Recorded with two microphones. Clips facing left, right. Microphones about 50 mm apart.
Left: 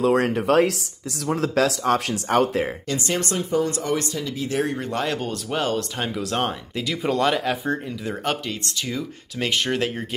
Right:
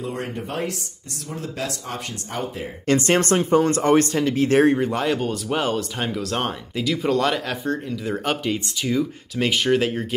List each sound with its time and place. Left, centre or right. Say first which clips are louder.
0.0 s speech: left 9 dB; left
2.9 s speech: right 7 dB; right
4.7 s speech: right 4 dB; centre